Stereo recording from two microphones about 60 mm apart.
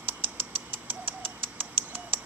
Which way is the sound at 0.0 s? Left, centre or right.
Right.